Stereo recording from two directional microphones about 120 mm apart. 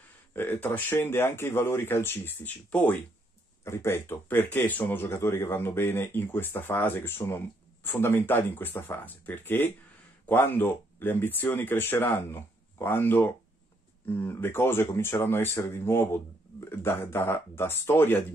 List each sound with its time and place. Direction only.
0.3 s speech: 15° left (ahead or behind)